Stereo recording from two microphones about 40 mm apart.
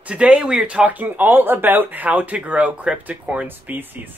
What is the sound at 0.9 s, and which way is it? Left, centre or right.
Speech, right.